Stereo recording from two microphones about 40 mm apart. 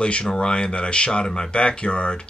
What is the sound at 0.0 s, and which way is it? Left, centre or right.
Speech, left.